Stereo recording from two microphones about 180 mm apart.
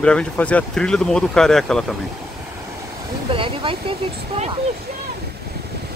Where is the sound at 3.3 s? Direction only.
30° right (ahead or behind).